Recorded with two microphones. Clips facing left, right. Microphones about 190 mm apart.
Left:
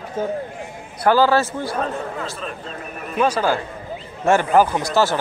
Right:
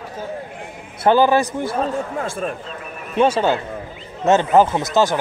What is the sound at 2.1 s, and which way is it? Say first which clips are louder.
Speech: right 5 dB; 50° right (ahead or behind).